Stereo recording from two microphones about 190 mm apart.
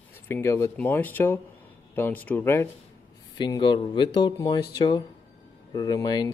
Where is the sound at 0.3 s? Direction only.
15° left (ahead or behind).